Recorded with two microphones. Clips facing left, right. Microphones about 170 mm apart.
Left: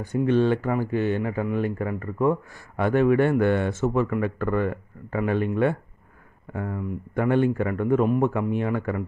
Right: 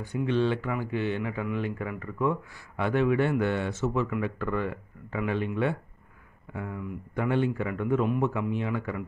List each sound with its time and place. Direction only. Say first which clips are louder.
0.0 s speech: left 5 dB; 45° left (ahead or behind)